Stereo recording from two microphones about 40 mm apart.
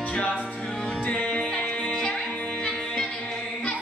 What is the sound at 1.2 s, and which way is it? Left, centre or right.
Music, centre.